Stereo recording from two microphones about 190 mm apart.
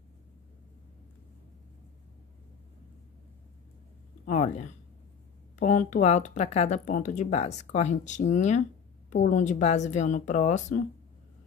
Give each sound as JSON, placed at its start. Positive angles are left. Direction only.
{"t": 5.6, "sound": "speech", "side_deg": 40}